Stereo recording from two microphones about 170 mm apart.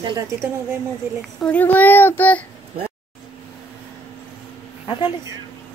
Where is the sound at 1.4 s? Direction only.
10° left (ahead or behind).